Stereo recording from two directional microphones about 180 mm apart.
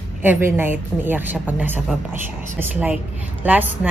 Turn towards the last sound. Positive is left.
turn(degrees=-10)  # may be behind; listen again after turning